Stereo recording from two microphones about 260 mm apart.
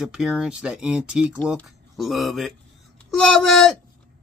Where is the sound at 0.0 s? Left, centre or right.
Centre.